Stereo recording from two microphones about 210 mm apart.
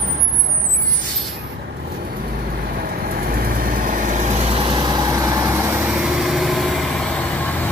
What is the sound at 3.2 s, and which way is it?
Vehicle, 45° right (ahead or behind).